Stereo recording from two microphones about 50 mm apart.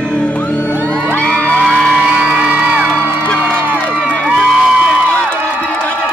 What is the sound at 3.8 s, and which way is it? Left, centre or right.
Crowd, right.